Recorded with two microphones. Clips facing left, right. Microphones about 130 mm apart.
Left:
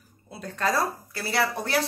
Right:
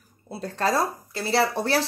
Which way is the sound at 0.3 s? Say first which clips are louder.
Right 3 dB; 30° right (ahead or behind).